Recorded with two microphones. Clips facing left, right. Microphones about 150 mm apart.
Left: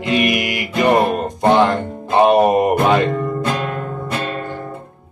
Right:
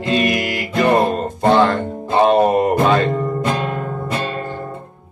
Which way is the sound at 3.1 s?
20° right (ahead or behind).